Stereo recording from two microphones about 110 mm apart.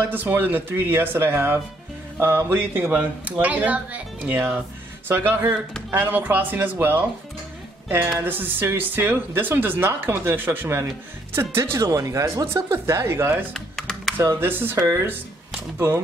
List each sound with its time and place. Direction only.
0.1 s speech: 20° right (ahead or behind)
8.2 s speech: 20° right (ahead or behind)
13.5 s typing: centre (ahead or behind)
14.1 s speech: 20° right (ahead or behind)